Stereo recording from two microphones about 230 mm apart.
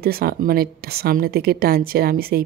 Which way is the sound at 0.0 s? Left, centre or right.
Right.